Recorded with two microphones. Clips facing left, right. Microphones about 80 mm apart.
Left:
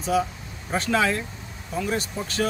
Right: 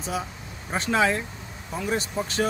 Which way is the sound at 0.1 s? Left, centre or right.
Right.